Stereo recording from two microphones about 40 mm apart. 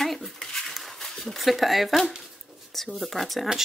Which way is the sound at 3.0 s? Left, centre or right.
Centre.